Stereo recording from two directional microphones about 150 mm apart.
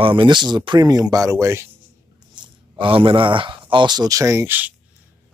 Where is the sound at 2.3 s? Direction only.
30° right (ahead or behind); by 4.7 s 15° right (ahead or behind).